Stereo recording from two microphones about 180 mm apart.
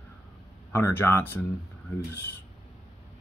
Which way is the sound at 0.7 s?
15° left (ahead or behind).